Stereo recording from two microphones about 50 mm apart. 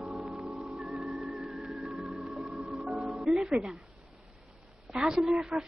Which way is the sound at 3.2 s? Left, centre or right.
Centre.